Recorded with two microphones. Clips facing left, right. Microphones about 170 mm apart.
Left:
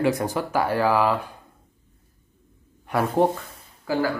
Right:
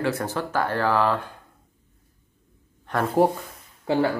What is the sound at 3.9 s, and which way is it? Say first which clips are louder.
Speech: right 2 dB; 25° right (ahead or behind).